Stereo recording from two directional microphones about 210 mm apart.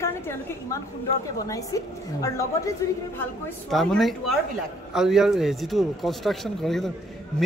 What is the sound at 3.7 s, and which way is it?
A woman's voice, centre (ahead or behind).